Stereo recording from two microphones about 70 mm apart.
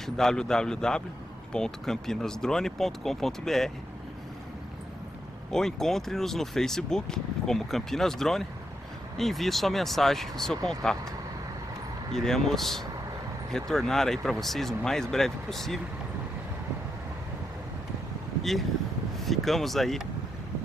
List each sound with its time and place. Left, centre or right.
0.0 s a man's voice: centre
5.5 s speech: centre
19.1 s speech: centre